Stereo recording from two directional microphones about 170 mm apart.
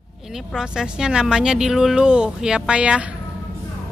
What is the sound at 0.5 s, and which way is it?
Speech, 5° right (ahead or behind).